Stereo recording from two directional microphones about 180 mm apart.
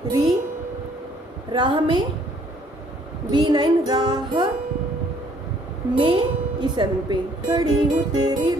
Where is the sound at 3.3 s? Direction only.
25° right (ahead or behind).